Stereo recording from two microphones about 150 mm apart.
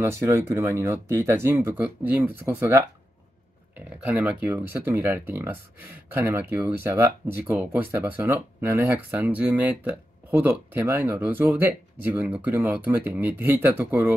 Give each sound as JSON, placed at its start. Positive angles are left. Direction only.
{"t": 0.0, "sound": "speech", "side_deg": -20}
{"t": 4.0, "sound": "speech", "side_deg": -10}